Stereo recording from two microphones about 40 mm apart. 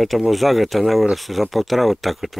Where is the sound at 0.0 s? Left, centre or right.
Centre.